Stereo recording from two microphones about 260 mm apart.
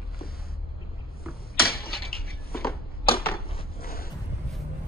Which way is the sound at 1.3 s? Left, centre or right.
Left.